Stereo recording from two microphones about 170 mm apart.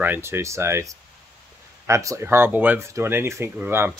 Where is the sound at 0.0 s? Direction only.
15° right (ahead or behind).